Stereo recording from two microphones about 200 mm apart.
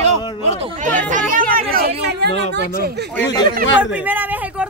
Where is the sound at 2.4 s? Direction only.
60° right (ahead or behind).